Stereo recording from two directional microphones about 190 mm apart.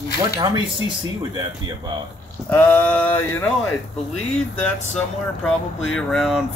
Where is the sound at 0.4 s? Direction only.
20° right (ahead or behind).